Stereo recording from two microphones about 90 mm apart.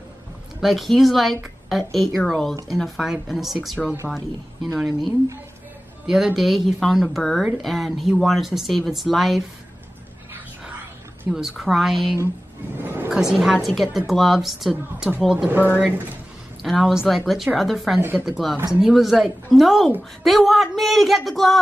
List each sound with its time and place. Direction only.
0.6 s a woman's voice: centre (ahead or behind)
11.2 s a woman's voice: 5° right (ahead or behind)
12.7 s a sound: 25° right (ahead or behind)
13.1 s a woman's voice: 5° right (ahead or behind)
15.2 s speech: 15° right (ahead or behind)
16.6 s a woman's voice: centre (ahead or behind)